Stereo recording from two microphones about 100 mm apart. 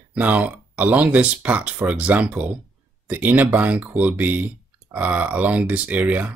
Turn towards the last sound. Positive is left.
turn(degrees=-15)  # may be behind; listen again after turning